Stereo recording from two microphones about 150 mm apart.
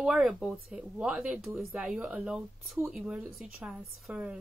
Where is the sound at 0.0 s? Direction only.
5° right (ahead or behind).